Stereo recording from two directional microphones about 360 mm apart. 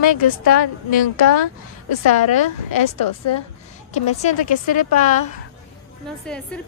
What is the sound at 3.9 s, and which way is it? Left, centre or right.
A woman's voice, left.